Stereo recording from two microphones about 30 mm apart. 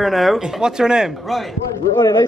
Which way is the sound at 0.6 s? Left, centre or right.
Right.